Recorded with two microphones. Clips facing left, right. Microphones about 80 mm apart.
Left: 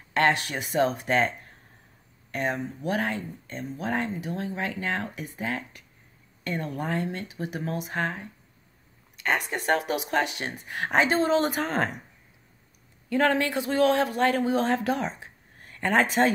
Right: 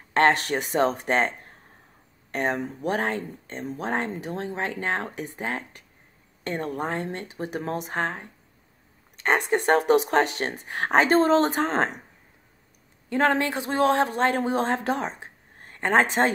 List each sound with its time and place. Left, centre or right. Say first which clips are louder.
0.1 s speech: right 3 dB; right
13.1 s a man's voice: right 1 dB; right